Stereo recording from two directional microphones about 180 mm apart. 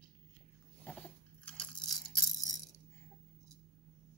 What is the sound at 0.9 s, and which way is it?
Biting, 5° left (ahead or behind).